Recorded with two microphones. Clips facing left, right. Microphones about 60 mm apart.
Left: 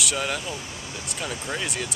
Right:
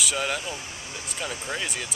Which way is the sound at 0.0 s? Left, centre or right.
Centre.